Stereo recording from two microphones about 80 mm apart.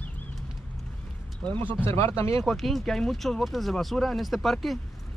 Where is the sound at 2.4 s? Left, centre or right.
Centre.